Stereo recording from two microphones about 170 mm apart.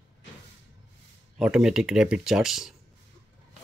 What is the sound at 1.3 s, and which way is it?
Speech, 5° right (ahead or behind).